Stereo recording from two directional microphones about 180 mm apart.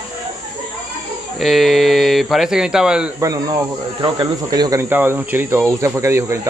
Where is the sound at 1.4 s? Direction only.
Centre (ahead or behind).